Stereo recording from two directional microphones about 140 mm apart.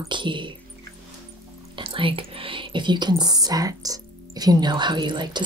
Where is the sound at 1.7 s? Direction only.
40° right (ahead or behind).